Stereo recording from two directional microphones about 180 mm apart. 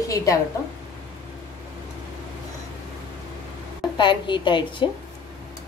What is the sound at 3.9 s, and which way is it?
Speech, 25° left (ahead or behind).